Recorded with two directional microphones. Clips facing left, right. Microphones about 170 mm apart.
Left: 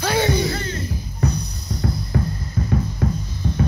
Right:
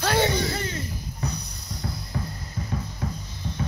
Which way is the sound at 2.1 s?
70° left (ahead or behind).